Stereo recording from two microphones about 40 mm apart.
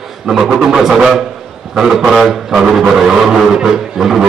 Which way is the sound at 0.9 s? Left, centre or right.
Centre.